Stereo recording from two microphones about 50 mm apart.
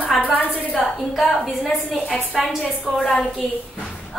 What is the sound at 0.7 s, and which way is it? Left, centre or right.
A woman's voice, centre.